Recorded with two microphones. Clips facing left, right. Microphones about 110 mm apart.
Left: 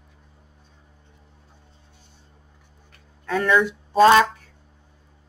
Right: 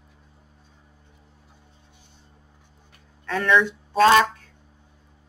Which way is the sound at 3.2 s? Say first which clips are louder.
Left 1 dB; 5° left (ahead or behind).